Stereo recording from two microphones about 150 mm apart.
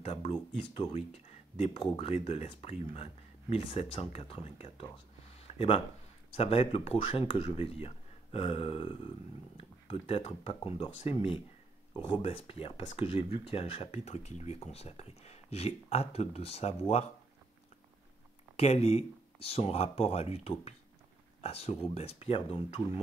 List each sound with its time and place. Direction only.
0.0 s speech: 45° left (ahead or behind)
1.6 s speech: 40° left (ahead or behind)
5.2 s a sound: 40° left (ahead or behind)
6.3 s speech: 40° left (ahead or behind)
18.6 s speech: 45° left (ahead or behind)